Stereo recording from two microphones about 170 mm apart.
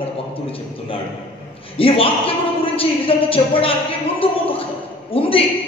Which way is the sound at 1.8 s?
35° left (ahead or behind).